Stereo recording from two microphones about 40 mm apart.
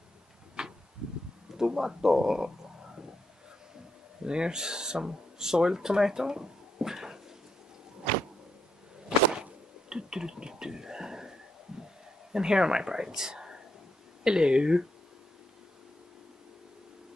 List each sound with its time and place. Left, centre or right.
0.6 s a sound: centre
1.6 s speech: centre
4.3 s speech: right
9.3 s a sound: centre
11.7 s heart sounds: centre
12.3 s speech: centre